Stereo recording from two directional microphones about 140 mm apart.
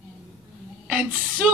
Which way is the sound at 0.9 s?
10° right (ahead or behind).